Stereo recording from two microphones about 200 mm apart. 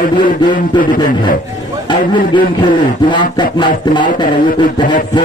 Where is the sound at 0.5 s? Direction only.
45° left (ahead or behind).